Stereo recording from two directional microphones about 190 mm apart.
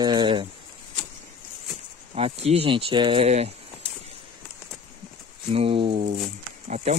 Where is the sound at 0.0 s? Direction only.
25° right (ahead or behind).